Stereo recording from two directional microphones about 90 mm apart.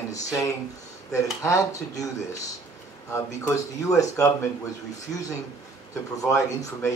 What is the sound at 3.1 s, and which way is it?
Speech, 35° left (ahead or behind).